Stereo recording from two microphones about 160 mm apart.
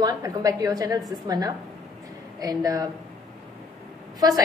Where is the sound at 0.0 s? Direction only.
20° right (ahead or behind).